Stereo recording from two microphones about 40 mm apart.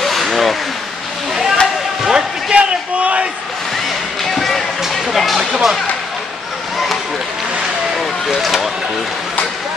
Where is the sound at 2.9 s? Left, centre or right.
Right.